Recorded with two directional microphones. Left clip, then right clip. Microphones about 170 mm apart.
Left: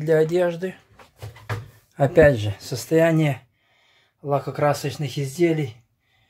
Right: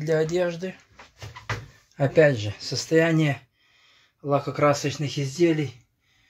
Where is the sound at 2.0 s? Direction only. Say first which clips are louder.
Left 4 dB; 15° left (ahead or behind).